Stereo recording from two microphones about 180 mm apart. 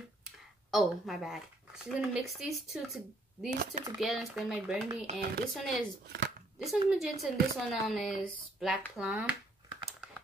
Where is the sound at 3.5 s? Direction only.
45° right (ahead or behind).